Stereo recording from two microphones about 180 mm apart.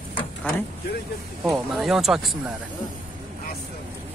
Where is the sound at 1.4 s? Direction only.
Centre (ahead or behind).